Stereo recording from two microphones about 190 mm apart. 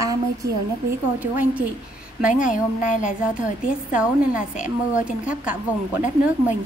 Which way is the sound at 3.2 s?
5° right (ahead or behind).